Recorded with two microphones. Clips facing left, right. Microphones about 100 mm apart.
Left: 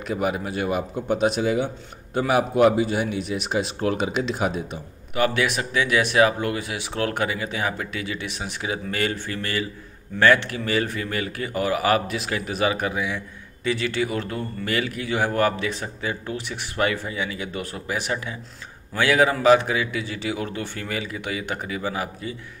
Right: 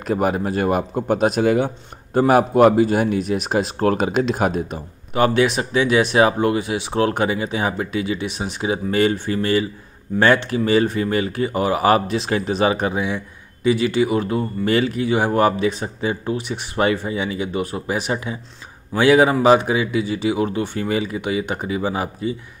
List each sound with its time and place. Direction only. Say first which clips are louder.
0.0 s a man's voice: right 5 dB; 45° right (ahead or behind)
5.1 s speech: right 5 dB; 30° right (ahead or behind)